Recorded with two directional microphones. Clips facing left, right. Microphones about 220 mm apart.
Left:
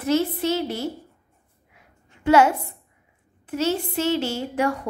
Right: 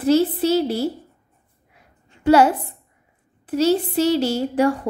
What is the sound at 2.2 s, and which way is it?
A woman's voice, 35° right (ahead or behind).